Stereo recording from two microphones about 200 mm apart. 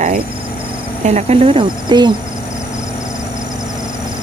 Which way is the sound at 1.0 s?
35° right (ahead or behind).